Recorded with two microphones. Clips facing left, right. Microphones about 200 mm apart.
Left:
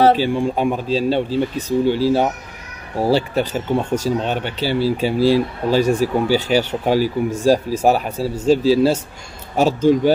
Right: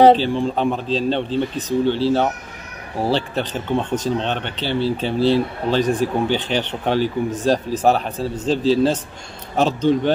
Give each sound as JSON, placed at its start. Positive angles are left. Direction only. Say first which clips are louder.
{"t": 0.1, "sound": "speech", "louder": "even", "side_deg": 10}